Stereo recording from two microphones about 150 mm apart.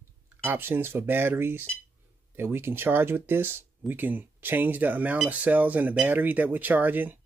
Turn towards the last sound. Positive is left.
turn(degrees=-10)  # may be behind; listen again after turning